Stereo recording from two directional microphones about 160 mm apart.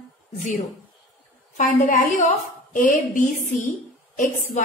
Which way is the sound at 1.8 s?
50° left (ahead or behind).